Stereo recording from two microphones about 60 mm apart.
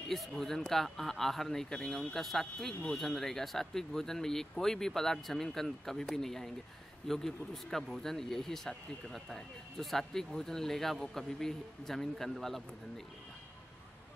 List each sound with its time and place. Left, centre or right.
0.1 s speech: centre